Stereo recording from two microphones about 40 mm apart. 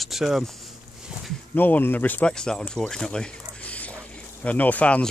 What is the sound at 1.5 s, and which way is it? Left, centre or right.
Speech, left.